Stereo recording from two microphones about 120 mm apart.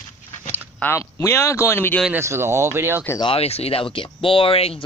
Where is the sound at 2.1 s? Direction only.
20° right (ahead or behind).